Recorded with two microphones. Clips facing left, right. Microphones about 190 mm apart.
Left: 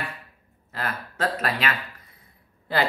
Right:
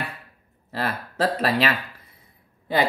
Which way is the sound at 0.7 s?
35° right (ahead or behind).